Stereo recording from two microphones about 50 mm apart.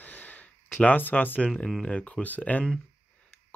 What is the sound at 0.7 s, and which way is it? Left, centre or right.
Speech, left.